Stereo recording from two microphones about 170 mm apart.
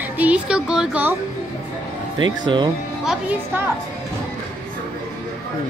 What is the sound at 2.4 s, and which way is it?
Speech, 25° right (ahead or behind).